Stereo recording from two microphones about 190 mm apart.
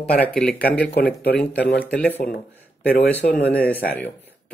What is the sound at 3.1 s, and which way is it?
Mantra, 45° left (ahead or behind).